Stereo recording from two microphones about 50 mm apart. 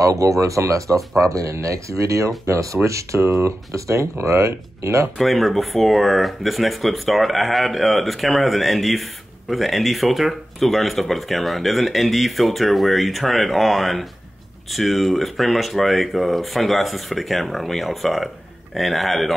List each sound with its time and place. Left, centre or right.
0.0 s speech: right
5.1 s speech: centre